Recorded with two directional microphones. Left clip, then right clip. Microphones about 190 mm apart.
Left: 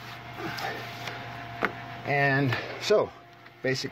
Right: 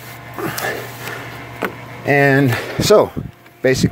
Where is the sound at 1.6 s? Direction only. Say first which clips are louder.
Right 10 dB; 40° right (ahead or behind); by 3.8 s 20° right (ahead or behind).